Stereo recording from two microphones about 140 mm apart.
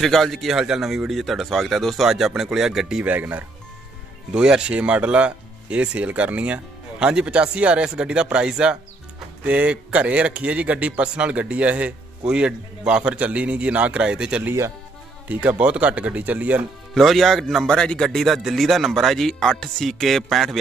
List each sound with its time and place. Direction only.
0.0 s a man's voice: centre (ahead or behind)
16.9 s a man's voice: centre (ahead or behind)